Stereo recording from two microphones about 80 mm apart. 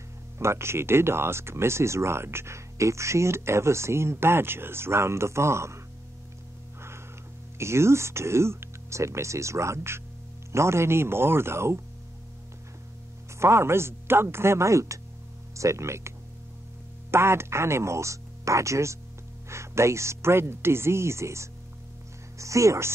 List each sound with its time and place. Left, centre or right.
0.4 s speech: right
7.5 s speech: right
13.4 s speech: right
17.1 s speech: right